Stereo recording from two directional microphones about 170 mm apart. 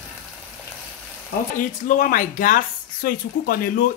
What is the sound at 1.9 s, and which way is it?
Speech, 50° left (ahead or behind).